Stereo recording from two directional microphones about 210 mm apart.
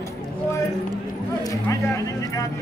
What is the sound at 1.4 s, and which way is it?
Speech, 15° left (ahead or behind).